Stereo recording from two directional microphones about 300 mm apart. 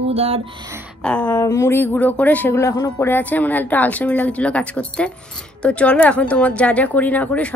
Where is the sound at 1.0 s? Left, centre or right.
Centre.